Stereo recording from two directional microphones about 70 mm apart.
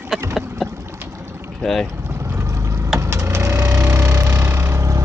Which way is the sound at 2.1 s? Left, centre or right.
Right.